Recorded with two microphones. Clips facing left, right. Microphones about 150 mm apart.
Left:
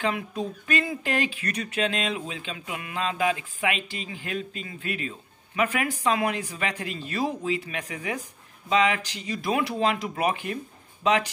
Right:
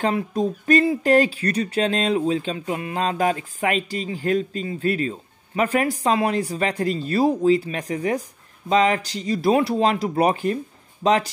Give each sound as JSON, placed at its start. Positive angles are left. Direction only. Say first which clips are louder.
{"t": 0.0, "sound": "speech", "louder": "right 6 dB", "side_deg": -35}